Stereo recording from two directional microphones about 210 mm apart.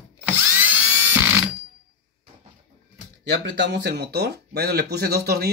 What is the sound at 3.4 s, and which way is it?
Speech, 55° right (ahead or behind).